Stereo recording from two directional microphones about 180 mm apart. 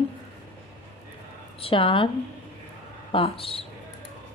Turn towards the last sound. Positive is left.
turn(degrees=30)  # may be behind; listen again after turning